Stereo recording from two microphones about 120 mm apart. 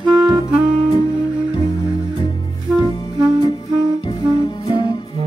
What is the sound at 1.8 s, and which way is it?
Music, 40° left (ahead or behind).